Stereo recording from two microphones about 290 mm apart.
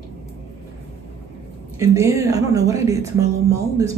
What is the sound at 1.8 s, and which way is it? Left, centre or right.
A woman's voice, centre.